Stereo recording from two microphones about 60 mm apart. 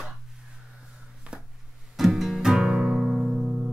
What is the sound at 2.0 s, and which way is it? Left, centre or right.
Music, centre.